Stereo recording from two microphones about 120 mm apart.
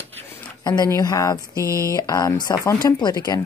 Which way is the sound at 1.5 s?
25° right (ahead or behind).